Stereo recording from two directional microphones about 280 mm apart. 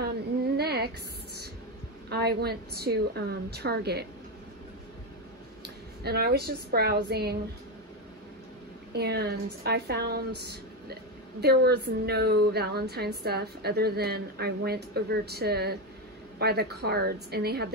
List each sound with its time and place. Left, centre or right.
0.6 s a sound: right
2.0 s a woman's voice: right
5.6 s a woman's voice: right
8.9 s a woman's voice: right